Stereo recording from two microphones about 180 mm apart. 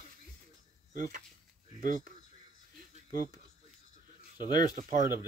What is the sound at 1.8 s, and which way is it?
Speech, 50° right (ahead or behind).